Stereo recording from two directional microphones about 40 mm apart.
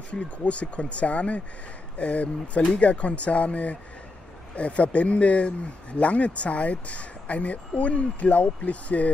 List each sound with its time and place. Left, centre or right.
0.1 s speech: left